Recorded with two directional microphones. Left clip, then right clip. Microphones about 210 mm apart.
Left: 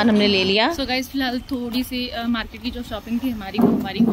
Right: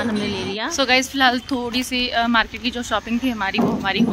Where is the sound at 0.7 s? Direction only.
Centre (ahead or behind).